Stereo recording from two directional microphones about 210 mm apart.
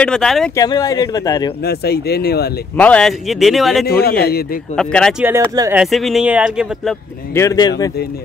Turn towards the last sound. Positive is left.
turn(degrees=20)  # may be behind; listen again after turning